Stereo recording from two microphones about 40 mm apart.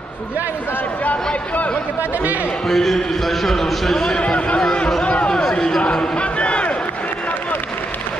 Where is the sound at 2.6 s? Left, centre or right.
Centre.